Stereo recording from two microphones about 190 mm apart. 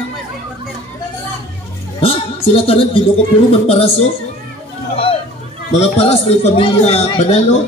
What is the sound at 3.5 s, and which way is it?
Speech, 30° left (ahead or behind).